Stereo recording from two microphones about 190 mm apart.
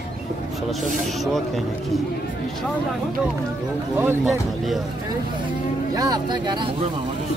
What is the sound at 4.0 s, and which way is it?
Speech, 10° right (ahead or behind).